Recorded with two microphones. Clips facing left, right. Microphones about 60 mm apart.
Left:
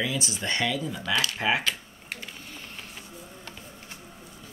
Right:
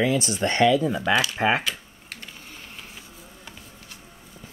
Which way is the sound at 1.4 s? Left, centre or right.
Right.